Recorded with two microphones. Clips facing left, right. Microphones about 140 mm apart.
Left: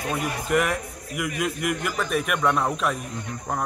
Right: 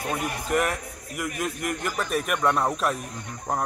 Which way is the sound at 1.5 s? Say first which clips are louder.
Left 2 dB; 40° right (ahead or behind).